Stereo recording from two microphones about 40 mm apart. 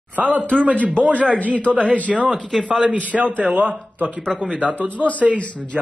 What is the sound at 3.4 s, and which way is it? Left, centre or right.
Speech, right.